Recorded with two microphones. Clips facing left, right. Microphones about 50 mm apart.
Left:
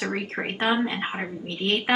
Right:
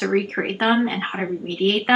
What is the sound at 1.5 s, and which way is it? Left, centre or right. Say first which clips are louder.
Speech: right 5 dB; right.